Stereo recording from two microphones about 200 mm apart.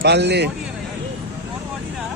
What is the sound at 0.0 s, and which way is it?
Speech, 55° right (ahead or behind).